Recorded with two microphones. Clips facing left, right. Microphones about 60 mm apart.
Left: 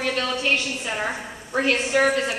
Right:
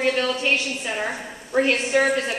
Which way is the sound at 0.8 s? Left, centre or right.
Centre.